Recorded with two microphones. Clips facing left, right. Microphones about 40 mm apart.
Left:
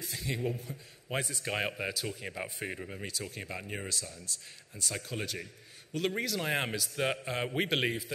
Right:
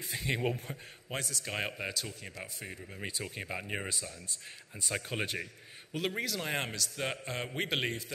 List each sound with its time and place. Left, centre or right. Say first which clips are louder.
0.1 s speech: right 4 dB; right
0.4 s speech: right 1 dB; right
1.4 s a man's voice: left 3 dB; centre
2.0 s speech: left 5 dB; centre
3.1 s speech: right 5 dB; right
5.9 s a man's voice: left 2 dB; centre